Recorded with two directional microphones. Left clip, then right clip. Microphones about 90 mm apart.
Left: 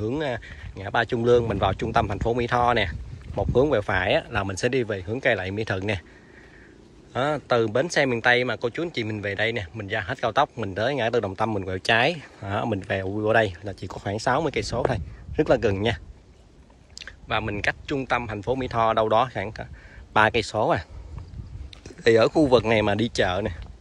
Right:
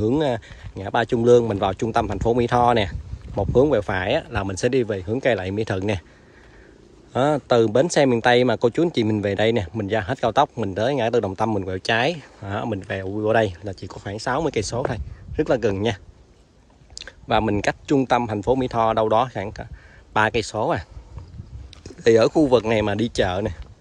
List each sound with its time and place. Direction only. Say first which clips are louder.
0.0 s speech: right 6 dB; 55° right (ahead or behind)
7.1 s speech: right 4 dB; 55° right (ahead or behind); by 9.1 s 90° right
9.2 s speech: right 3 dB; 70° right (ahead or behind); by 13.2 s 20° right (ahead or behind)
13.2 s speech: right 2 dB; 35° right (ahead or behind)
13.8 s speech: left 3 dB; 15° right (ahead or behind)
14.3 s speech: right 3 dB; 40° right (ahead or behind)
14.8 s speech: left 1 dB; 25° right (ahead or behind)
16.9 s speech: right 6 dB; 70° right (ahead or behind); by 20.8 s 30° right (ahead or behind)
21.8 s speech: right 2 dB; 35° right (ahead or behind)